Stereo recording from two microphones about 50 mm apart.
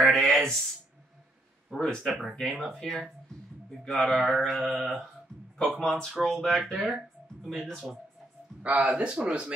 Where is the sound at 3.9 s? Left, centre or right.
Centre.